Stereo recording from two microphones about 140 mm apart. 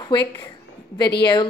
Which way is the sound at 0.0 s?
35° left (ahead or behind).